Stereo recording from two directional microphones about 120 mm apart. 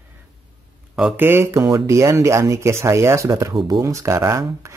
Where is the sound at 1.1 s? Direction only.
20° right (ahead or behind).